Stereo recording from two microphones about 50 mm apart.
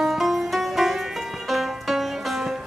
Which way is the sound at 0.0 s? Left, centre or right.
Centre.